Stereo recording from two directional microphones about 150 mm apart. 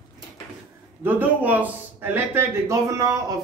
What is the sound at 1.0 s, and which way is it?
A man's voice, 10° right (ahead or behind).